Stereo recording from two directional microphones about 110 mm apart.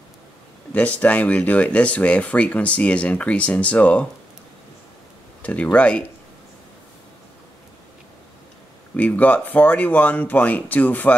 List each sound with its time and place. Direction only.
0.7 s speech: 15° left (ahead or behind)
5.4 s speech: 10° left (ahead or behind)
8.9 s speech: 15° left (ahead or behind)